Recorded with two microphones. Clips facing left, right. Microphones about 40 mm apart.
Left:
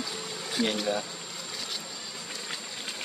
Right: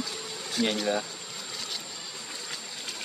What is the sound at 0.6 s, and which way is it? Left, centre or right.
Speech, centre.